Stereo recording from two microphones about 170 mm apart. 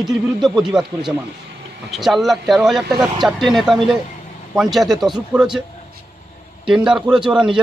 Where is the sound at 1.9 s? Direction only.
Centre (ahead or behind).